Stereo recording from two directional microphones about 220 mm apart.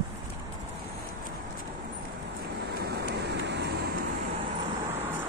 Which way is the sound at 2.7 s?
50° right (ahead or behind).